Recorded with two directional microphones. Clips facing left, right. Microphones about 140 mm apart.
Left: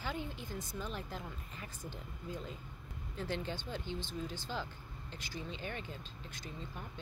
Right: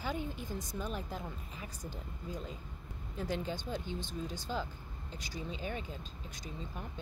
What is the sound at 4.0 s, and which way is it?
Speech, 45° right (ahead or behind).